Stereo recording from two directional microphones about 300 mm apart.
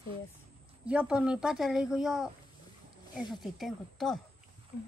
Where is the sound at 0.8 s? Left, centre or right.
Centre.